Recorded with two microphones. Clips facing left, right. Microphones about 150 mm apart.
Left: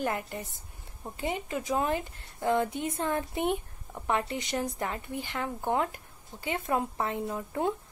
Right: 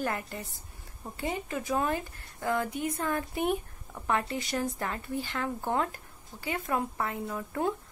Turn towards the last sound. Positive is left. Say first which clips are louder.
# left 1 dB
turn(degrees=20)  # may be behind; listen again after turning